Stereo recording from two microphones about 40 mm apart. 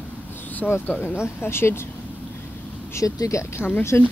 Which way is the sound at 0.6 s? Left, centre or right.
Left.